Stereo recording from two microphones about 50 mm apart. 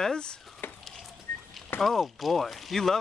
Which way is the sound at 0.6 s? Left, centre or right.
Left.